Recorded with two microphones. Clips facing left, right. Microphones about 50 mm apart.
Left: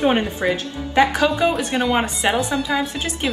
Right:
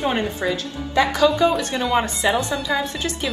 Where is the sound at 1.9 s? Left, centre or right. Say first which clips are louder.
Right 3 dB; left.